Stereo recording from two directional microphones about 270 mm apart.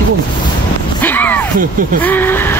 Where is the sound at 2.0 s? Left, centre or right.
Centre.